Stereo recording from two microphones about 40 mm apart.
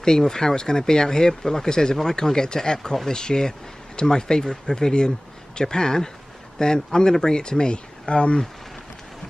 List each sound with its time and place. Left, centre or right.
0.0 s speech: centre